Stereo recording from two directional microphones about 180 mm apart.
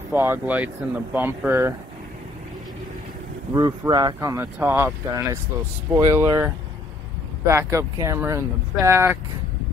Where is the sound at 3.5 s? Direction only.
20° right (ahead or behind).